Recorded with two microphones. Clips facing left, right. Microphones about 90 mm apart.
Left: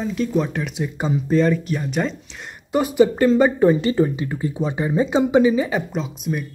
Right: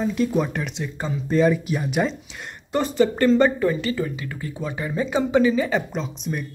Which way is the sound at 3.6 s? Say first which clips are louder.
Left 6 dB; 25° left (ahead or behind).